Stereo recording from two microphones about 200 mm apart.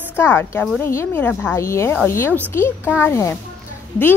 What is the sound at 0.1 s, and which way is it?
A woman's voice, 10° left (ahead or behind).